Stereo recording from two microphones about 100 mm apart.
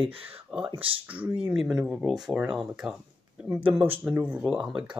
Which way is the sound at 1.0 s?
15° right (ahead or behind).